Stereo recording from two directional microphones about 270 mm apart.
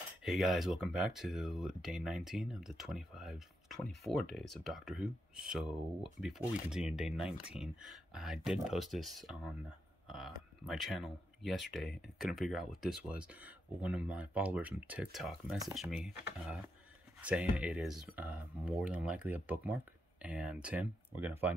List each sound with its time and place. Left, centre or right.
0.2 s speech: centre